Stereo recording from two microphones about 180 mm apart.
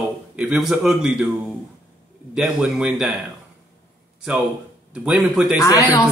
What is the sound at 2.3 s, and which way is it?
Speech, 5° right (ahead or behind).